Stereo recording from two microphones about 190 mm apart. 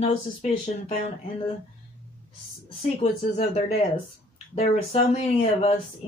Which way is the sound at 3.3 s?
35° left (ahead or behind).